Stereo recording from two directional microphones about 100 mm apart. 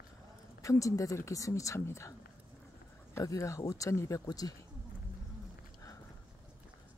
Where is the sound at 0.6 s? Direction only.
35° left (ahead or behind).